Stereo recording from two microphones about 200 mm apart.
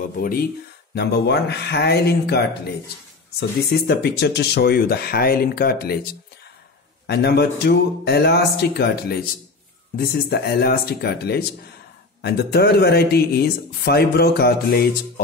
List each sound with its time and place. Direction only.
0.2 s speech: 45° left (ahead or behind)
7.1 s speech: 55° left (ahead or behind)